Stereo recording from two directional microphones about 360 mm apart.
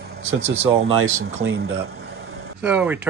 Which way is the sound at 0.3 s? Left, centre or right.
Right.